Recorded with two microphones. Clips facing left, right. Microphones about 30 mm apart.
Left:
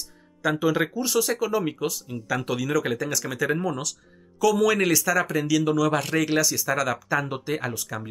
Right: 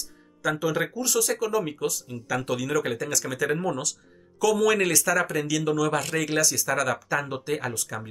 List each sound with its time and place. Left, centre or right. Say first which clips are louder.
0.4 s speech: left 3 dB; centre